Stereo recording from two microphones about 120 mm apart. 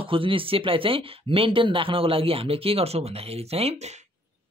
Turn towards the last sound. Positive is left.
turn(degrees=-70)  # may be behind; listen again after turning